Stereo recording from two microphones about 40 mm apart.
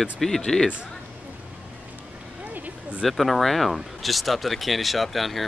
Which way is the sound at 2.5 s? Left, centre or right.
Right.